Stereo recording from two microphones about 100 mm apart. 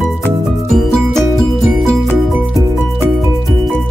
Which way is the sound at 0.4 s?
Centre (ahead or behind).